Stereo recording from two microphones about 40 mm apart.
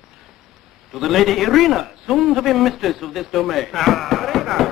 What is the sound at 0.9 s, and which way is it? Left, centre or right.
A man's voice, centre.